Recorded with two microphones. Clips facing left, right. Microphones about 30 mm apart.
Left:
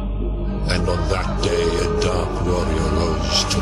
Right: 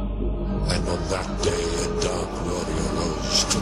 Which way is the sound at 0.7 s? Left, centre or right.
Left.